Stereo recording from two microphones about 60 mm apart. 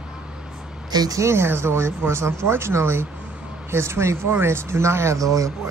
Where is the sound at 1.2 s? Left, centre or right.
Right.